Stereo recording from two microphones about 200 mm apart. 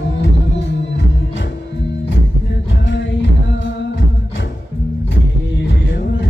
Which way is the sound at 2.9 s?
65° left (ahead or behind).